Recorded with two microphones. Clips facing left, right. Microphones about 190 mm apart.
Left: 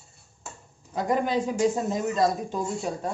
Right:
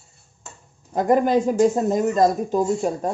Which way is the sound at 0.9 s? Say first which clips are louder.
Right 7 dB; 50° right (ahead or behind).